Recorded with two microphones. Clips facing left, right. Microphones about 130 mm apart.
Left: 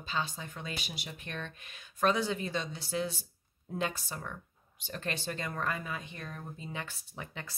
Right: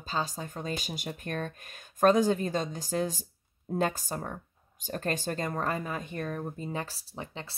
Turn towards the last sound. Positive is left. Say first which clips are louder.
# right 4 dB
turn(degrees=-30)  # may be behind; listen again after turning